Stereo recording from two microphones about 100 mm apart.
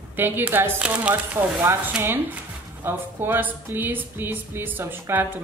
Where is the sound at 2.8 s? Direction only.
25° right (ahead or behind).